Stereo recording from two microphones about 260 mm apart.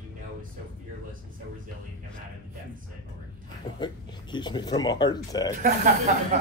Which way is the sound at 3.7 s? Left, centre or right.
Centre.